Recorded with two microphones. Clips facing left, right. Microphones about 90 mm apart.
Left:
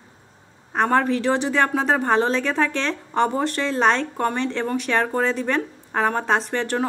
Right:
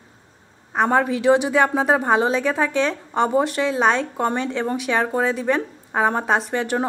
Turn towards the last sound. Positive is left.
turn(degrees=-10)  # may be behind; listen again after turning